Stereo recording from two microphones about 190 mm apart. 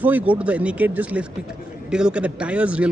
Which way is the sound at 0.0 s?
10° right (ahead or behind).